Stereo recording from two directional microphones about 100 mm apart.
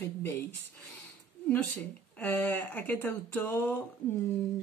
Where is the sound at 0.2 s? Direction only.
20° left (ahead or behind).